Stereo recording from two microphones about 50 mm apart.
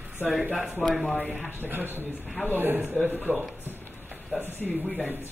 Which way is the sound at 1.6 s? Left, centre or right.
Right.